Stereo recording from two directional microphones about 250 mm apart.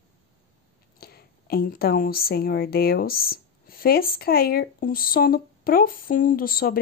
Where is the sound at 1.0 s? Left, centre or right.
Left.